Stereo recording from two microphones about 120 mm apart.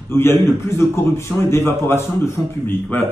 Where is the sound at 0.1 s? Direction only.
20° left (ahead or behind).